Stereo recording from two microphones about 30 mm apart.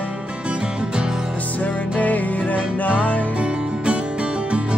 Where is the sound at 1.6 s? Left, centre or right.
Left.